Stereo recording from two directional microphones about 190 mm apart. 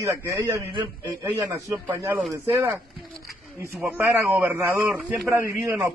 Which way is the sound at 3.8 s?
10° right (ahead or behind).